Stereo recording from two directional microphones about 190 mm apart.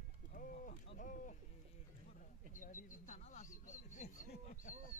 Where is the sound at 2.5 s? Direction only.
45° left (ahead or behind).